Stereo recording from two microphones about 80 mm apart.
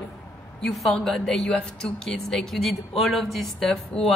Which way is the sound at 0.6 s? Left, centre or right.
Centre.